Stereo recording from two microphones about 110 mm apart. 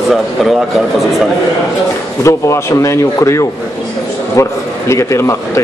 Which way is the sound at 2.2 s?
25° left (ahead or behind).